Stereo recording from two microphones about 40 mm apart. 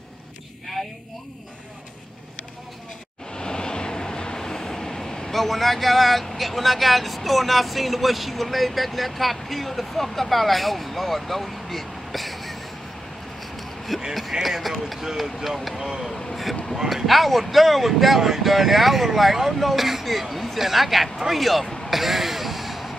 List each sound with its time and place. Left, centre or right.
3.3 s train: centre
5.3 s speech: centre
13.4 s a sound: centre
14.4 s speech: centre
15.8 s speech: centre
16.9 s speech: centre
21.2 s a sound: centre